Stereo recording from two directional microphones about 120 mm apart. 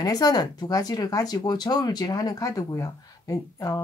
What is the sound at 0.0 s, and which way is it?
Speech, 30° left (ahead or behind).